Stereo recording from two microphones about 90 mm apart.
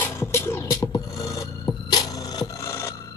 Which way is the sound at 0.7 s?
45° left (ahead or behind).